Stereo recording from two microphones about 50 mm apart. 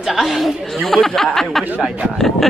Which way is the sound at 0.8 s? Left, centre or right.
Centre.